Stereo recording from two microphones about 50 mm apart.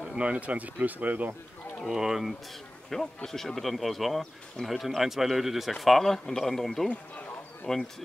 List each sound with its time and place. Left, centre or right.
0.1 s speech: right
1.9 s speech: centre
2.9 s a man's voice: centre